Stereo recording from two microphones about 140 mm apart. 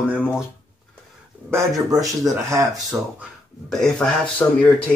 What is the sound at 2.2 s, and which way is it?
Speech, 20° right (ahead or behind).